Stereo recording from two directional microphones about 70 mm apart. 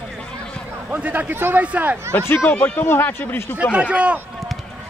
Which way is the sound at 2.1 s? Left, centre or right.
Left.